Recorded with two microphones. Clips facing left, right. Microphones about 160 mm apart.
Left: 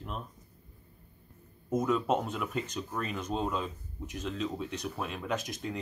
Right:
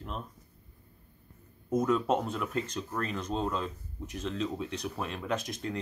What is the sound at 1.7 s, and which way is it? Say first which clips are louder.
Speech: right 1 dB; centre (ahead or behind).